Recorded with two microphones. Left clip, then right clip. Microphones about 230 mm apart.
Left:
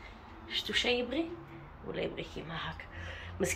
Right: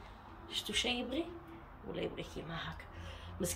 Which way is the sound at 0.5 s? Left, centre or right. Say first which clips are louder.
Left 5 dB; centre.